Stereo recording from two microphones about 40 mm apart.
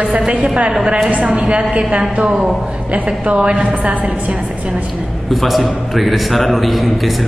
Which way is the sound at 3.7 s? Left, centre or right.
Right.